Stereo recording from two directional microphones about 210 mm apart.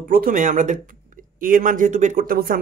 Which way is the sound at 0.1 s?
40° right (ahead or behind).